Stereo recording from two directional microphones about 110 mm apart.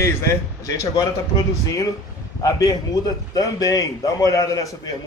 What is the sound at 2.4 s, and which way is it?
A man's voice, 30° left (ahead or behind).